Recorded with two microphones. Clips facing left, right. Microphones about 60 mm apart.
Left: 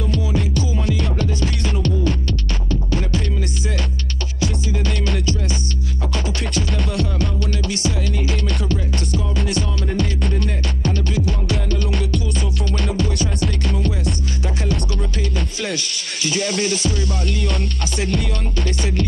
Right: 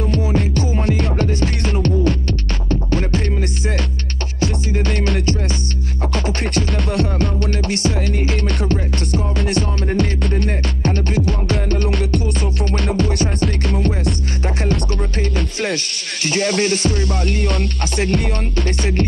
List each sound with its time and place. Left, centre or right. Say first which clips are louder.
0.1 s music: right 1 dB; right
11.9 s music: right 3 dB; right